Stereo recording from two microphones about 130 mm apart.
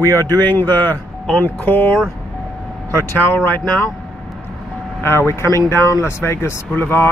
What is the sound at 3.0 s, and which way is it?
Speech, 15° left (ahead or behind).